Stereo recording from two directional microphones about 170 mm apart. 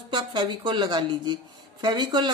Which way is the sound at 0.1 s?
30° right (ahead or behind).